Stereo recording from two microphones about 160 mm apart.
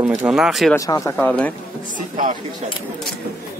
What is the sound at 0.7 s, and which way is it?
Speech, 20° left (ahead or behind).